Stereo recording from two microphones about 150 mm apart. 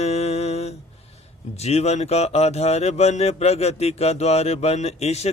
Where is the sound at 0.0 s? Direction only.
45° left (ahead or behind).